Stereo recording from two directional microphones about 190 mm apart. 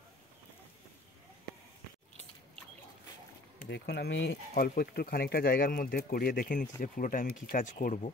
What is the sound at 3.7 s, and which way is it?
Speech, 60° left (ahead or behind).